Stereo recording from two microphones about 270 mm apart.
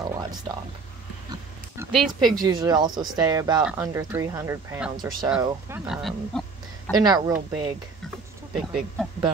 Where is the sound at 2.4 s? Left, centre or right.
Centre.